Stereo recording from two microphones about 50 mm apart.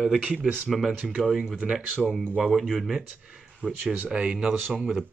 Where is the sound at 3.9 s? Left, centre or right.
Centre.